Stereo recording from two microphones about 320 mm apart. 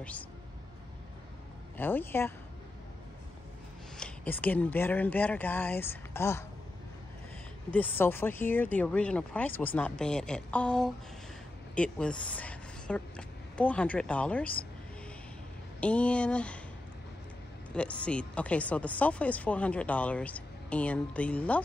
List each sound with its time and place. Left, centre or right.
1.8 s speech: centre
4.0 s speech: centre
7.7 s speech: centre
15.8 s speech: centre
17.7 s speech: centre